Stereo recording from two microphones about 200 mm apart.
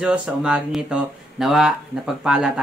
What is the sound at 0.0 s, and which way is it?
Speech, 5° right (ahead or behind).